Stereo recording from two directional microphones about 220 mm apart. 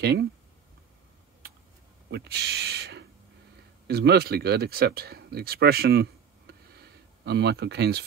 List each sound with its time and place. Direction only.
0.0 s speech: 50° right (ahead or behind)
2.0 s a sound: 50° right (ahead or behind)
3.8 s speech: 45° right (ahead or behind)